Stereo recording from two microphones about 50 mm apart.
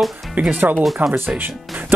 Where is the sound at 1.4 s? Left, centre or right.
Right.